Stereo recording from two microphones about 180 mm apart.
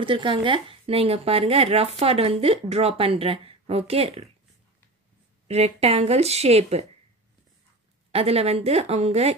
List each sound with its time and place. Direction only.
0.0 s speech: 30° right (ahead or behind)
5.5 s speech: 35° right (ahead or behind)
8.1 s speech: 35° right (ahead or behind)